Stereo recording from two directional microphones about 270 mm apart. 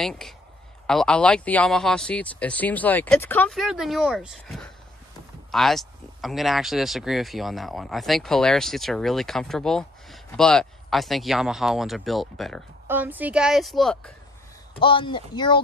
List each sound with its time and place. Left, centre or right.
0.0 s speech: centre
14.8 s speech: centre